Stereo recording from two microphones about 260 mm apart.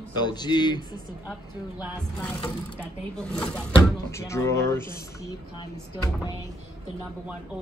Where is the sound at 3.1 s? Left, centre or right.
Centre.